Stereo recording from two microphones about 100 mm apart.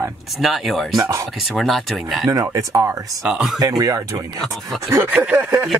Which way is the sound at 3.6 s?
40° right (ahead or behind).